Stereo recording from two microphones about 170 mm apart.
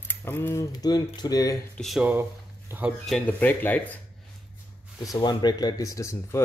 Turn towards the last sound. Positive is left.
turn(degrees=15)  # may be behind; listen again after turning